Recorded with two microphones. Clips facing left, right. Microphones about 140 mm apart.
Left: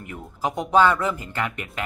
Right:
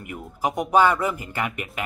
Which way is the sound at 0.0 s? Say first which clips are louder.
Right 1 dB; 10° right (ahead or behind).